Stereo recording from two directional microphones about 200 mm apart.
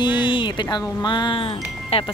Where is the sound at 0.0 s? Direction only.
20° left (ahead or behind).